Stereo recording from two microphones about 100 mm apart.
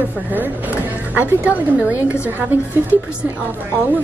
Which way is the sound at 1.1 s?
15° right (ahead or behind).